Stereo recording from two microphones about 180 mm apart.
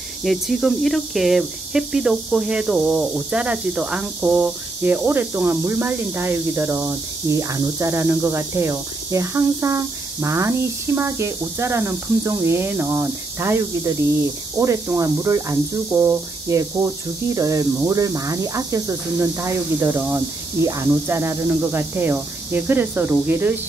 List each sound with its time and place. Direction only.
0.2 s speech: centre (ahead or behind)